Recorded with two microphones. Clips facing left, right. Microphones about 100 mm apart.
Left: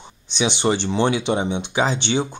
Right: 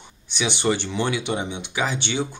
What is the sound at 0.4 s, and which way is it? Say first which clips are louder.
Speech: left 3 dB; 25° left (ahead or behind).